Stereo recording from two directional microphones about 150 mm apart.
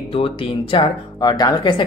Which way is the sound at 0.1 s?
35° left (ahead or behind).